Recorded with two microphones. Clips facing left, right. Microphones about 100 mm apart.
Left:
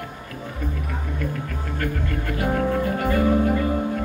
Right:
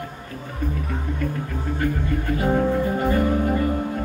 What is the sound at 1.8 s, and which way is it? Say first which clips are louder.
Speech: right 3 dB; 20° right (ahead or behind).